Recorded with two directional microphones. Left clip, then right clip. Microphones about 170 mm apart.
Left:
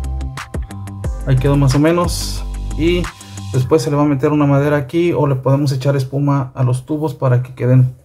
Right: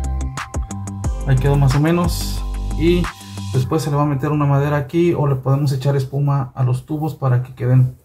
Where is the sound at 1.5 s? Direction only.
35° left (ahead or behind).